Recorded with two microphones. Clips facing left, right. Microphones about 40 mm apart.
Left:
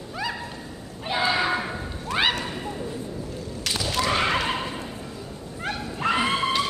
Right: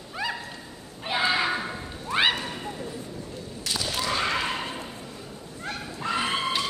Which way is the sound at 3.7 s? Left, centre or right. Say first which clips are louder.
Left 2 dB; left.